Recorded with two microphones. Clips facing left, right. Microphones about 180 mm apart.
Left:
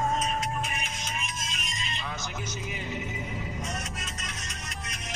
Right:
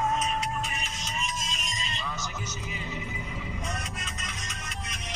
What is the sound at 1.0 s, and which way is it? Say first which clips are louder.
Music: right 2 dB; 55° left (ahead or behind).